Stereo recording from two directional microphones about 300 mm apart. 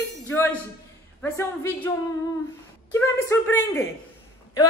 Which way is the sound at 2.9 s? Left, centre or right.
Centre.